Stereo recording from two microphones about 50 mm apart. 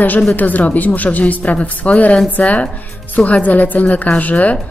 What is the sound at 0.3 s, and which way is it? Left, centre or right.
Speech, left.